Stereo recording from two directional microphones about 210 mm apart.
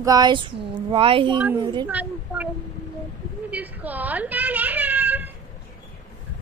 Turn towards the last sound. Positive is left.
turn(degrees=-10)  # may be behind; listen again after turning